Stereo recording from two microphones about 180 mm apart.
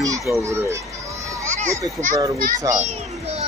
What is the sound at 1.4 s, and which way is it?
Children playing, 40° right (ahead or behind).